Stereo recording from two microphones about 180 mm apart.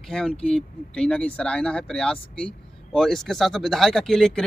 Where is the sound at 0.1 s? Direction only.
5° left (ahead or behind).